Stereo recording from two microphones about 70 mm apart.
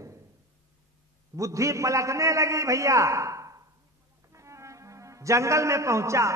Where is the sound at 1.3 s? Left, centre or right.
Right.